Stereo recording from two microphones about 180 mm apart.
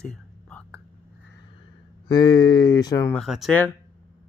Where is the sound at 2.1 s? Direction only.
25° left (ahead or behind).